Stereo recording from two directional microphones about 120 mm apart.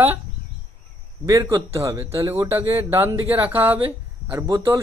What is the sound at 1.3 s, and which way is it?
Speech, 25° right (ahead or behind).